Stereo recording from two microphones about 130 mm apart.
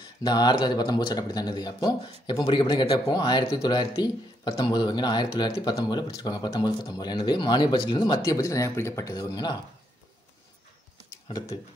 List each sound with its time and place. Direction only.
0.2 s speech: 30° left (ahead or behind)
8.2 s speech: 25° left (ahead or behind)
9.1 s speech: 30° left (ahead or behind)